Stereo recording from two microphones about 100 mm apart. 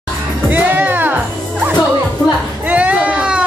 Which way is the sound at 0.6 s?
15° right (ahead or behind).